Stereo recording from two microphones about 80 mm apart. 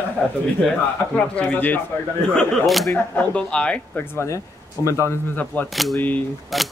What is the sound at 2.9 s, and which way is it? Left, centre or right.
Speech, centre.